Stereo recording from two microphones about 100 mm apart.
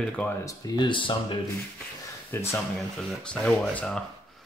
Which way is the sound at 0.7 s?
55° left (ahead or behind).